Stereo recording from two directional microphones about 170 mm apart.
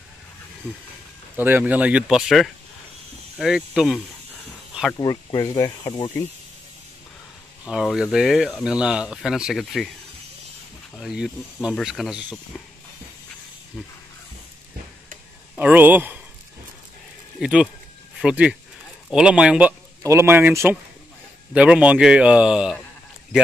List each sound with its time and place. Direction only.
0.7 s speech: 5° left (ahead or behind)
1.3 s speech: 10° right (ahead or behind)
4.9 s speech: 25° left (ahead or behind)
7.6 s speech: 5° right (ahead or behind)
11.0 s speech: centre (ahead or behind)
15.5 s a man's voice: 10° right (ahead or behind)
17.4 s speech: 5° right (ahead or behind)
20.0 s speech: 15° right (ahead or behind)